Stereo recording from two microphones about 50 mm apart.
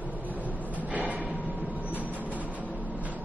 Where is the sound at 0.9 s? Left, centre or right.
Right.